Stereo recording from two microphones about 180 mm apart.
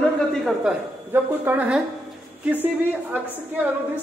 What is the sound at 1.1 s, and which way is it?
A woman's voice, 10° right (ahead or behind).